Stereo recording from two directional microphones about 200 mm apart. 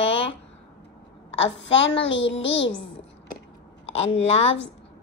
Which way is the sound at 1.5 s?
65° left (ahead or behind).